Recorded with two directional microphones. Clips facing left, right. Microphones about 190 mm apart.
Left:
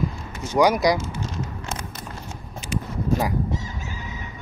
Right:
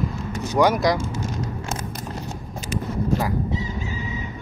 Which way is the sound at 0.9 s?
45° right (ahead or behind).